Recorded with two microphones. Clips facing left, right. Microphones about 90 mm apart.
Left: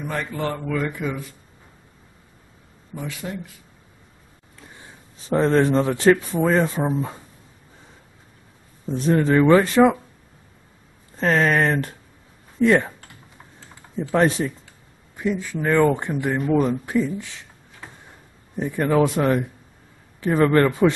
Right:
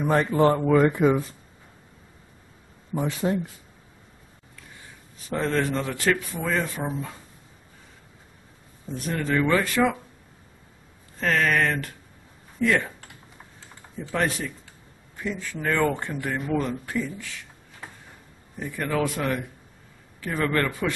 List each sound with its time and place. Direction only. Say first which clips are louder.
0.0 s speech: right 7 dB; 30° right (ahead or behind)
2.9 s speech: right 6 dB; 30° right (ahead or behind)
5.3 s speech: left 7 dB; 30° left (ahead or behind)
9.1 s speech: left 8 dB; 35° left (ahead or behind)
11.1 s speech: left 4 dB; 25° left (ahead or behind)
14.1 s speech: left 7 dB; 25° left (ahead or behind)
18.6 s speech: left 7 dB; 25° left (ahead or behind)